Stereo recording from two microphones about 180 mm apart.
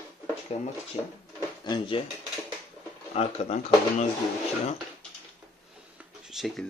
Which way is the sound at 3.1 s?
35° left (ahead or behind).